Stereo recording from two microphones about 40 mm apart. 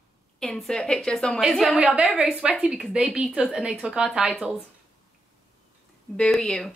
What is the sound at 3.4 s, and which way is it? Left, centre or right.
A woman's voice, right.